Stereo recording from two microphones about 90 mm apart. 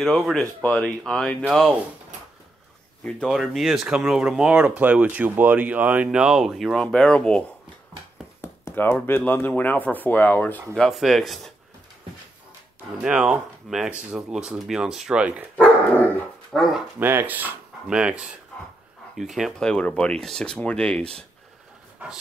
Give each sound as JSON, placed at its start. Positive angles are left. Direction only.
{"t": 0.0, "sound": "speech", "side_deg": 5}
{"t": 3.0, "sound": "speech", "side_deg": 10}
{"t": 3.3, "sound": "speech", "side_deg": 0}
{"t": 8.4, "sound": "speech", "side_deg": 30}
{"t": 10.9, "sound": "speech", "side_deg": 0}
{"t": 13.0, "sound": "speech", "side_deg": -10}
{"t": 16.5, "sound": "speech", "side_deg": 0}
{"t": 17.0, "sound": "speech", "side_deg": -20}
{"t": 17.8, "sound": "speech", "side_deg": -10}
{"t": 19.6, "sound": "speech", "side_deg": 10}
{"t": 22.0, "sound": "speech", "side_deg": -20}